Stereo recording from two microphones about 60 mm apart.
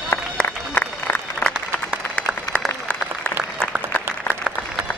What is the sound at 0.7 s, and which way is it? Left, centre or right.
Run, left.